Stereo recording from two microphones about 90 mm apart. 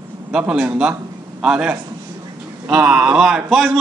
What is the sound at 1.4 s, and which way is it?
A man's voice, 10° right (ahead or behind).